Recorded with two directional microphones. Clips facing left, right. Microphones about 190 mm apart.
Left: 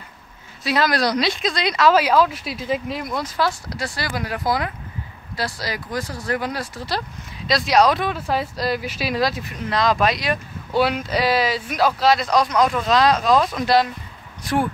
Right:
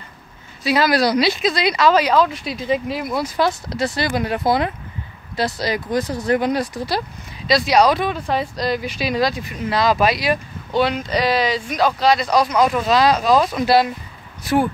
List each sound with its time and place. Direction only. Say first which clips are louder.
0.7 s speech: right 3 dB; 5° right (ahead or behind)
3.3 s speech: right 3 dB; 20° right (ahead or behind)
7.4 s speech: right 2 dB; centre (ahead or behind)
10.7 s speech: right 1 dB; 5° left (ahead or behind)